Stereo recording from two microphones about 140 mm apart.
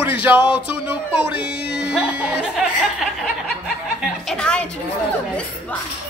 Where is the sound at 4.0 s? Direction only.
5° left (ahead or behind).